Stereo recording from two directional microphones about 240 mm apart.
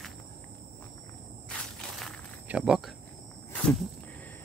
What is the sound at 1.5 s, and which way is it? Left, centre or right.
Walk, centre.